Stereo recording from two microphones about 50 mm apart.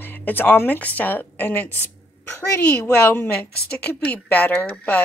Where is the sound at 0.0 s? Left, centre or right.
Left.